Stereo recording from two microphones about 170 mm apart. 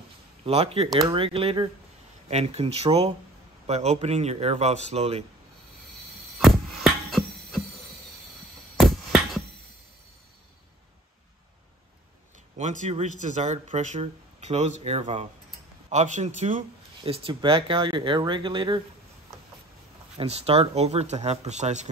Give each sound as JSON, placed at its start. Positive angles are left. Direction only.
{"t": 0.5, "sound": "speech", "side_deg": -35}
{"t": 6.4, "sound": "a sound", "side_deg": 0}
{"t": 8.7, "sound": "a sound", "side_deg": 0}
{"t": 12.5, "sound": "a man's voice", "side_deg": -45}
{"t": 17.0, "sound": "speech", "side_deg": -30}
{"t": 20.2, "sound": "speech", "side_deg": -35}